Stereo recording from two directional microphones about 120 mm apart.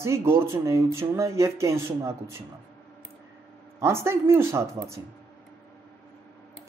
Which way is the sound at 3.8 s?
20° right (ahead or behind).